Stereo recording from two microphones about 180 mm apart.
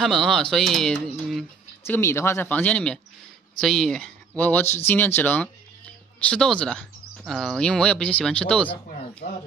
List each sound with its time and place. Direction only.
0.0 s speech: centre (ahead or behind)
1.9 s speech: 15° left (ahead or behind)
9.2 s speech: 60° left (ahead or behind)